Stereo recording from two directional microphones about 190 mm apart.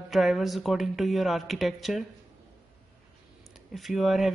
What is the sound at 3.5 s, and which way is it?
Speech, centre (ahead or behind).